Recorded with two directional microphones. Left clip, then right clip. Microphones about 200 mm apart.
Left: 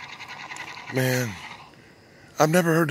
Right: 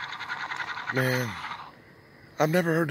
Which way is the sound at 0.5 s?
20° left (ahead or behind).